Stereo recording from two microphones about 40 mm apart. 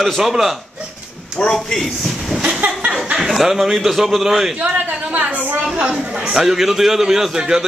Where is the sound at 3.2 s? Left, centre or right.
Centre.